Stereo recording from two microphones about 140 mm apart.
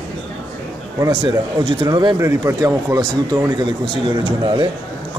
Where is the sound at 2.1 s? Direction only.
20° right (ahead or behind).